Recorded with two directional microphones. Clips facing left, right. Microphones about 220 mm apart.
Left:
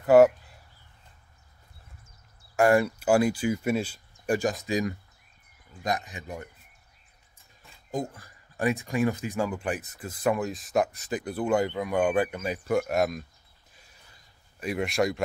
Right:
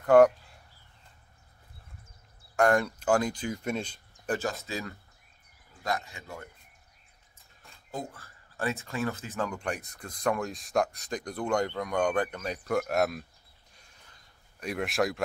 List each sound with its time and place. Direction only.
0.0 s speech: 5° left (ahead or behind)
2.5 s speech: 5° left (ahead or behind)
7.9 s speech: 15° left (ahead or behind)
14.6 s speech: centre (ahead or behind)